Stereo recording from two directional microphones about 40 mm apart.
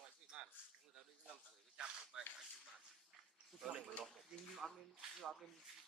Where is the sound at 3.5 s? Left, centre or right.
Centre.